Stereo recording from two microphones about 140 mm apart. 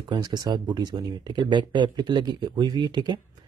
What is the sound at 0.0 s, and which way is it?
Speech, 30° right (ahead or behind).